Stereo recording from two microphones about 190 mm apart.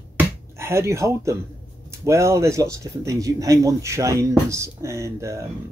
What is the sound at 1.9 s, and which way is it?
Speech, 15° right (ahead or behind).